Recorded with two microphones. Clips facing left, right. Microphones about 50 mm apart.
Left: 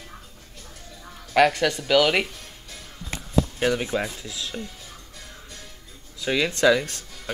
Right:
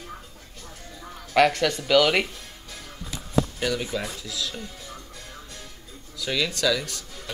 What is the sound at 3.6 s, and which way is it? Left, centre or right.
Speech, left.